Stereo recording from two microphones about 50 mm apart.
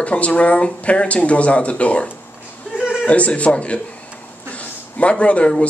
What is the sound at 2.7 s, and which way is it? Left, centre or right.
Chuckle, centre.